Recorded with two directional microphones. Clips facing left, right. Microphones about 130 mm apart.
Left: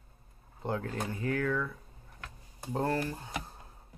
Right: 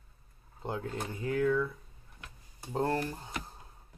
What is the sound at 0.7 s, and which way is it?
Speech, 20° right (ahead or behind).